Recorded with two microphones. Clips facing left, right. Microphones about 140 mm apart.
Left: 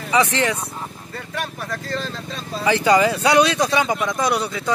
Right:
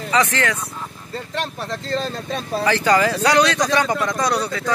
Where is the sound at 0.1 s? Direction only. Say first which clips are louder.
Left 1 dB; 15° left (ahead or behind).